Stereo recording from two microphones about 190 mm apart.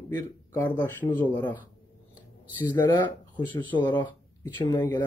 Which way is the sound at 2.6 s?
25° left (ahead or behind).